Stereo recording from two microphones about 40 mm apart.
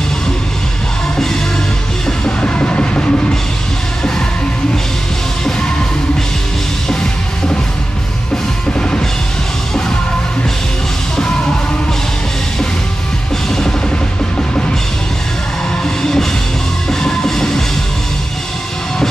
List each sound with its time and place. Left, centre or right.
2.0 s music: left
6.9 s music: centre
15.8 s music: centre